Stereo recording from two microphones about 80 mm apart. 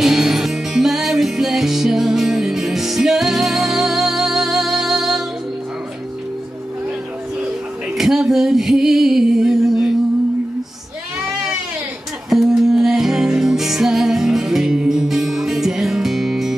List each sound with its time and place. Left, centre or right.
0.0 s music: centre
8.0 s music: centre
12.3 s music: centre